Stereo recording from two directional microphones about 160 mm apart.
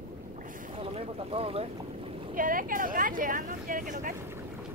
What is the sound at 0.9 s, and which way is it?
Speech, 40° right (ahead or behind).